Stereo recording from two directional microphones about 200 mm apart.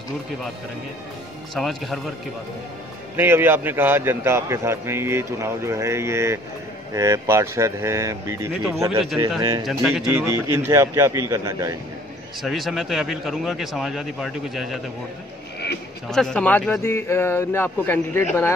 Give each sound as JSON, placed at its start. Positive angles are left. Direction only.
{"t": 1.5, "sound": "speech", "side_deg": 0}
{"t": 3.2, "sound": "a man's voice", "side_deg": -10}
{"t": 9.7, "sound": "a man's voice", "side_deg": -5}
{"t": 12.4, "sound": "speech", "side_deg": 0}
{"t": 16.1, "sound": "speech", "side_deg": 0}